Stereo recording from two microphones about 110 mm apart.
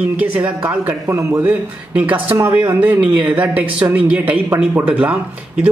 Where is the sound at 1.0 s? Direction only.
25° right (ahead or behind).